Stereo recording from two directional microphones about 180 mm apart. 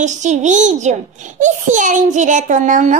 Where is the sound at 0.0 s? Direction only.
40° right (ahead or behind).